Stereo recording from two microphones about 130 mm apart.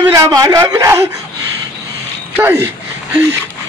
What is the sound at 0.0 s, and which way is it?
Speech, 30° right (ahead or behind).